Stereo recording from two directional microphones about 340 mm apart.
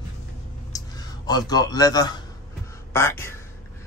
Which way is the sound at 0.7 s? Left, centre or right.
Centre.